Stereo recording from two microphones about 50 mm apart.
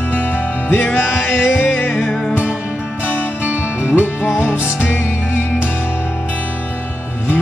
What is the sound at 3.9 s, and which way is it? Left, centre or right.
Music, left.